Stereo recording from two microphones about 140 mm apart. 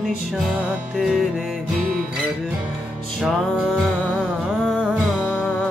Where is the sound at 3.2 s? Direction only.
5° right (ahead or behind).